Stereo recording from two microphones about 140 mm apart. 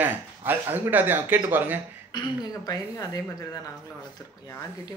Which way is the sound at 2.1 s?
30° left (ahead or behind).